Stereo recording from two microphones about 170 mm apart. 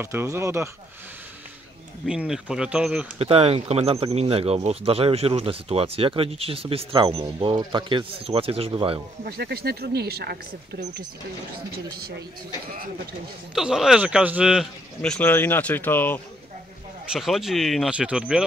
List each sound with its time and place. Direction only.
0.0 s speech: 15° right (ahead or behind)
2.0 s speech: 5° right (ahead or behind)
3.2 s speech: 35° right (ahead or behind)
9.2 s speech: 70° right (ahead or behind)
13.6 s speech: 5° right (ahead or behind)
15.0 s speech: 10° left (ahead or behind)
17.1 s speech: centre (ahead or behind)